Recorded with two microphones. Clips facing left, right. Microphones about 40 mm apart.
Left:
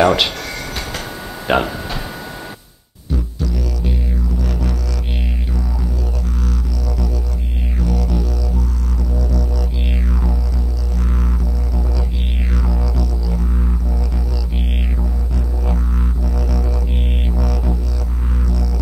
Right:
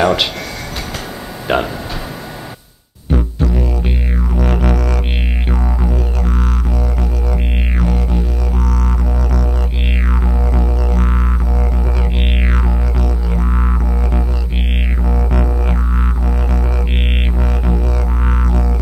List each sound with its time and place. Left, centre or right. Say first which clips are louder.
0.0 s speech: even; centre
1.5 s speech: even; centre
3.1 s music: right 6 dB; right
7.8 s music: right 1 dB; right
8.5 s music: right 5 dB; right